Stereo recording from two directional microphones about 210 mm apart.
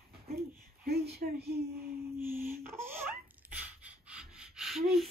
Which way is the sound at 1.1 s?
50° right (ahead or behind).